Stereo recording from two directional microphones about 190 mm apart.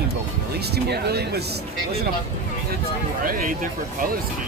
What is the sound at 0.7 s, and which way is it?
Speech, 60° right (ahead or behind).